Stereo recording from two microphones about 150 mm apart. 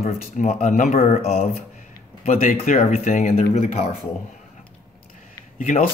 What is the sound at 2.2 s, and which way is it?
Speech, 70° left (ahead or behind).